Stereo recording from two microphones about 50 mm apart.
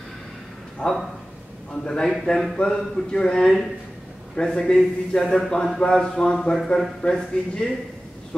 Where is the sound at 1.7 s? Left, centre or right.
Centre.